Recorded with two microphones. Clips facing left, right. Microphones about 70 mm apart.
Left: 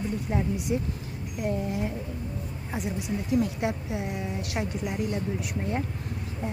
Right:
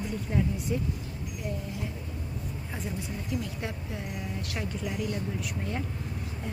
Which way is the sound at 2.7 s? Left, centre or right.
Centre.